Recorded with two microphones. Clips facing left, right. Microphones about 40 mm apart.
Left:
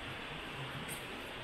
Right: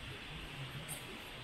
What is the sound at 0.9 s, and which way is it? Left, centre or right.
Music, left.